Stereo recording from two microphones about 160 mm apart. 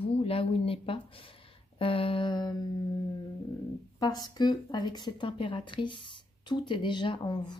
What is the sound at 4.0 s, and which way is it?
Speech, 25° left (ahead or behind).